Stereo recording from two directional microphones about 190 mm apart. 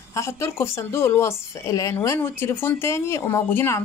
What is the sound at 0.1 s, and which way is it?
Speech, 15° left (ahead or behind).